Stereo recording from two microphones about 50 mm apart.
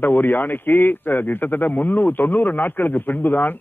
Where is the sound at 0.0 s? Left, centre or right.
Left.